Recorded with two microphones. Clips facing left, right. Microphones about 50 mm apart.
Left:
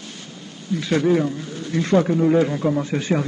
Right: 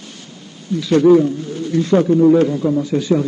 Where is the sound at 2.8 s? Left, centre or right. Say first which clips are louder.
Right 5 dB; left.